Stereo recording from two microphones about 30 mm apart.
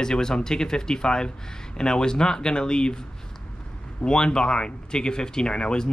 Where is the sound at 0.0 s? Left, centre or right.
Left.